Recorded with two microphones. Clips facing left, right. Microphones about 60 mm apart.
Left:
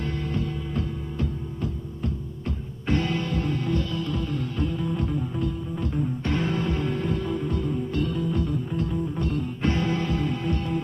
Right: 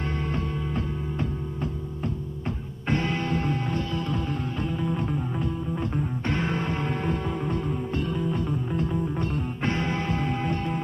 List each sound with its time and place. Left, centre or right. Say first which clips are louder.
0.0 s music: even; right
2.9 s music: even; right
4.6 s music: right 2 dB; centre